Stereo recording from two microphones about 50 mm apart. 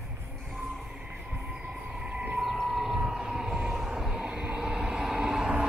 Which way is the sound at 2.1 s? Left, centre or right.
Right.